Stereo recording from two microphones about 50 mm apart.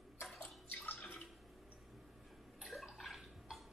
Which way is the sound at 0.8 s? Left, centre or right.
Left.